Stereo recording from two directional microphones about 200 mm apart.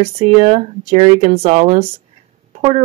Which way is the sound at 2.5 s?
30° right (ahead or behind).